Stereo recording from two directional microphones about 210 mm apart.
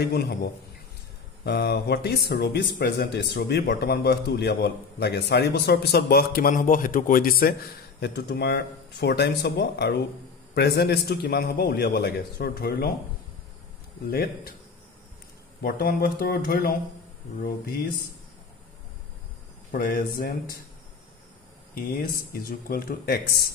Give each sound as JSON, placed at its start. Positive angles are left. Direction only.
{"t": 0.0, "sound": "speech", "side_deg": 50}
{"t": 1.4, "sound": "speech", "side_deg": 50}
{"t": 14.1, "sound": "speech", "side_deg": 45}
{"t": 15.6, "sound": "speech", "side_deg": 45}
{"t": 19.7, "sound": "speech", "side_deg": 40}
{"t": 21.7, "sound": "speech", "side_deg": 45}